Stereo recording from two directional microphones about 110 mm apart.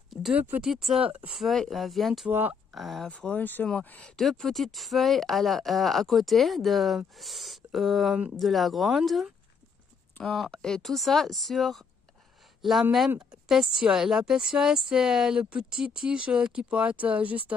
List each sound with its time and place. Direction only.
0.1 s a sound: 5° right (ahead or behind)
0.4 s speech: 15° right (ahead or behind)
0.7 s speech: 5° right (ahead or behind)
2.2 s speech: 15° right (ahead or behind)
2.7 s speech: centre (ahead or behind)
4.2 s speech: centre (ahead or behind)